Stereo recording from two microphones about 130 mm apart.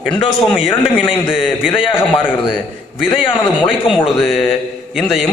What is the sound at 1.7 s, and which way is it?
Speech, 40° left (ahead or behind).